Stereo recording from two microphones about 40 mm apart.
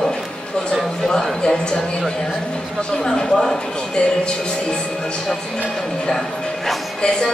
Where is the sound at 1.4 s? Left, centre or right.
Left.